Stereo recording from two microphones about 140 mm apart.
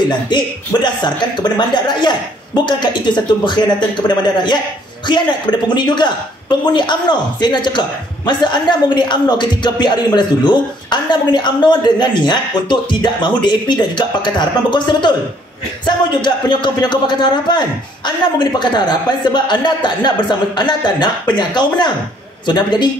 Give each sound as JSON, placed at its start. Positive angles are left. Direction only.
{"t": 0.3, "sound": "speech", "side_deg": 30}
{"t": 5.8, "sound": "speech", "side_deg": 30}